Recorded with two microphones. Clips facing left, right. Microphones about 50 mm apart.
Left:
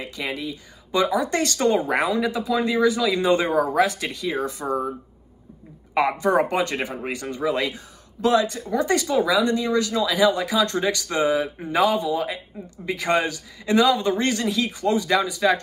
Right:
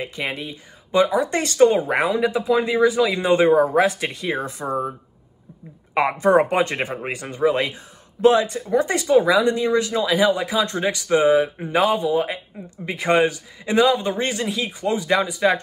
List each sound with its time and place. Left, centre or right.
0.0 s speech: right
5.9 s speech: right